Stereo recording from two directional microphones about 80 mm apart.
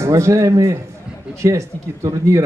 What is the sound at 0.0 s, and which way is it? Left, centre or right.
Speech, right.